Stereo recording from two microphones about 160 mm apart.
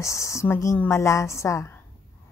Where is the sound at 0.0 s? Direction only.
20° left (ahead or behind).